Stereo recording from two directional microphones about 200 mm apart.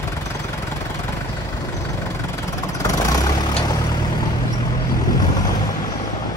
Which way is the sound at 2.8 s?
15° left (ahead or behind).